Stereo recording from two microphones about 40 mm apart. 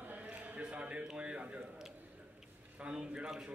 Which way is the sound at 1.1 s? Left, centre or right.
Right.